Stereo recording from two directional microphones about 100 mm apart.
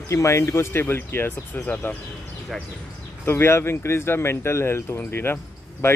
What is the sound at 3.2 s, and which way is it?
Speech, 25° left (ahead or behind).